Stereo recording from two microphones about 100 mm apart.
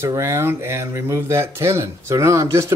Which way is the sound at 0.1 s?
30° right (ahead or behind).